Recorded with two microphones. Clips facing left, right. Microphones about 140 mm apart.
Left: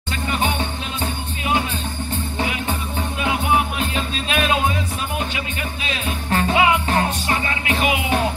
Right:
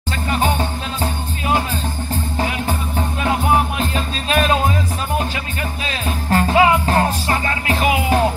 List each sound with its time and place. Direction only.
0.3 s music: 35° right (ahead or behind)
5.9 s music: 35° right (ahead or behind)